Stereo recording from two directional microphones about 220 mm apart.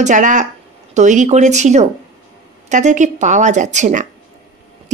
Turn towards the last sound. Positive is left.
turn(degrees=-35)  # may be behind; listen again after turning